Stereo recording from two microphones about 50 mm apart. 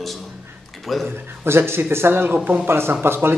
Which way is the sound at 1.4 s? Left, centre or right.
Right.